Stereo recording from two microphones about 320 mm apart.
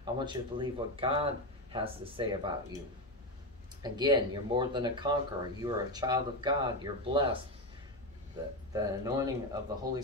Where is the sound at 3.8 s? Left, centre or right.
Centre.